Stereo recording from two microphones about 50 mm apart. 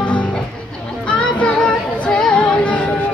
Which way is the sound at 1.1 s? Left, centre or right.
Left.